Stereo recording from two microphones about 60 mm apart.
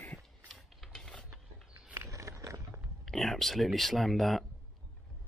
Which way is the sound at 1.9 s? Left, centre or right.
Right.